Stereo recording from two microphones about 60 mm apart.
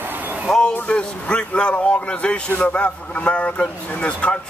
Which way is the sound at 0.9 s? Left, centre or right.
Centre.